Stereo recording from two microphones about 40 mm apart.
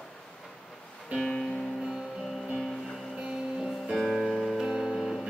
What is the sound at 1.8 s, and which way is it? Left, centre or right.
Music, centre.